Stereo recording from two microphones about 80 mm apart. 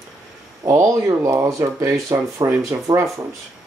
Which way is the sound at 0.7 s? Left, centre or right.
Right.